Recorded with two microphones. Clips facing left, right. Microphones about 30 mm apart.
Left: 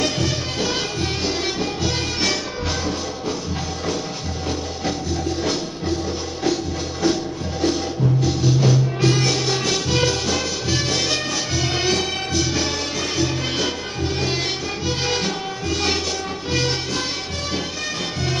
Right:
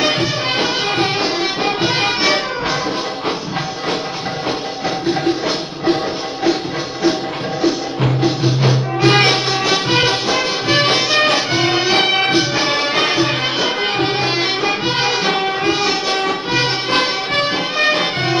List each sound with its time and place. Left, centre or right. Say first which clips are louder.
0.0 s music: right 6 dB; right
8.2 s music: right 4 dB; right
9.1 s music: right 8 dB; right
9.5 s music: right 5 dB; right
16.9 s music: right 10 dB; right